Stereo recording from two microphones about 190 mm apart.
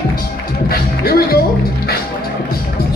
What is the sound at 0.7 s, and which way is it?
Speech, 55° left (ahead or behind).